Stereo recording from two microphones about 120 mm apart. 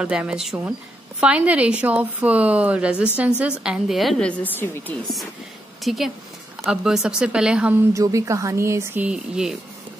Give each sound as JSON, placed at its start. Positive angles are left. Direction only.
{"t": 0.0, "sound": "a woman's voice", "side_deg": -10}
{"t": 5.8, "sound": "a woman's voice", "side_deg": 0}
{"t": 7.9, "sound": "speech", "side_deg": -25}
{"t": 9.0, "sound": "a woman's voice", "side_deg": -5}